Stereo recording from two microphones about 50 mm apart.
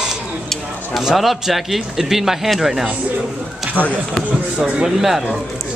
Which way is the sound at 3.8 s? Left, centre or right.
Right.